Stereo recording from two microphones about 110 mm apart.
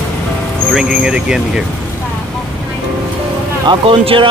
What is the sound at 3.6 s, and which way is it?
Speech, 55° right (ahead or behind).